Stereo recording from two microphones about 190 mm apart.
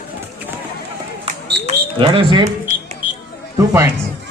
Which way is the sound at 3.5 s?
15° right (ahead or behind).